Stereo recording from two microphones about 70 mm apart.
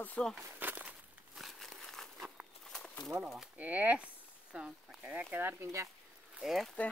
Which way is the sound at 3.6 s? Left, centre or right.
Right.